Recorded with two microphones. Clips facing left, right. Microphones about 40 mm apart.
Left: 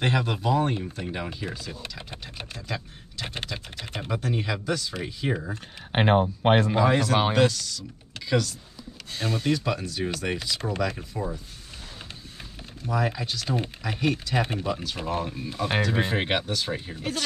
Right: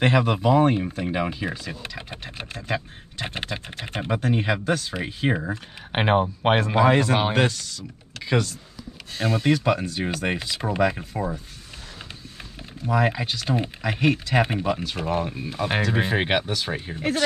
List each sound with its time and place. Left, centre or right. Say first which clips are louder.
0.0 s speech: right 5 dB; right
6.9 s speech: right 2 dB; right
12.8 s speech: right 5 dB; right
14.4 s speech: right 4 dB; right
15.0 s speech: right 3 dB; centre
16.9 s speech: right 6 dB; right